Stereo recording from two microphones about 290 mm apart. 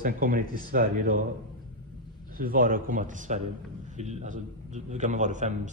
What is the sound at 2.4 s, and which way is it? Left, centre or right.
Speech, right.